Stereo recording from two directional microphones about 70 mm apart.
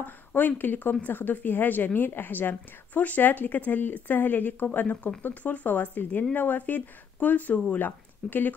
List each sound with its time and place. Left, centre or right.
0.0 s a woman's voice: left